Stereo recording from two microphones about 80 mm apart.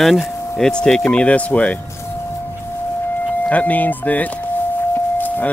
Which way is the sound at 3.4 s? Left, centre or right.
Centre.